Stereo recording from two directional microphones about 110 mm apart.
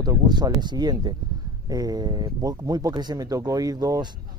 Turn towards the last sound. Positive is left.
turn(degrees=-35)  # may be behind; listen again after turning